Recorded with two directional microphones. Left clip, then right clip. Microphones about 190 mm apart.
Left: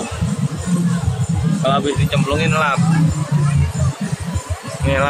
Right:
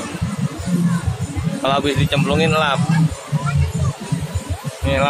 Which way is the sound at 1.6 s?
55° right (ahead or behind).